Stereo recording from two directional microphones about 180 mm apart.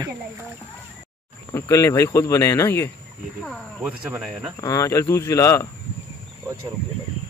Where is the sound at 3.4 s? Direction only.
5° right (ahead or behind).